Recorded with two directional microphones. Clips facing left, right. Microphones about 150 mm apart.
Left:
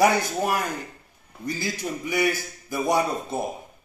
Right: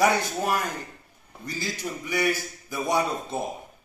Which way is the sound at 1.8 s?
15° left (ahead or behind).